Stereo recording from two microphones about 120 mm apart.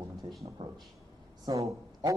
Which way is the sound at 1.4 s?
30° right (ahead or behind).